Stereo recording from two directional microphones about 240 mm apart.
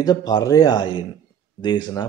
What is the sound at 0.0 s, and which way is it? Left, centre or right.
Speech, centre.